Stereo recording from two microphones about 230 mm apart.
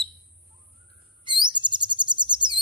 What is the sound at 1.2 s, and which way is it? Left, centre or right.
Chirp, centre.